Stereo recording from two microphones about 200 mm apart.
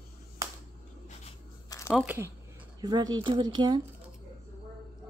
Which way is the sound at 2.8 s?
20° right (ahead or behind).